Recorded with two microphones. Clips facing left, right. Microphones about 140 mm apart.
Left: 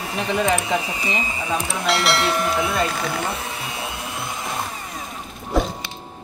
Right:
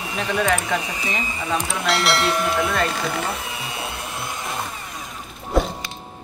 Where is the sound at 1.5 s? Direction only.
Centre (ahead or behind).